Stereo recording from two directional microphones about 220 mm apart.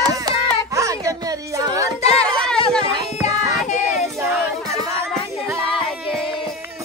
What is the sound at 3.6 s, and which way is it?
Child singing, centre (ahead or behind).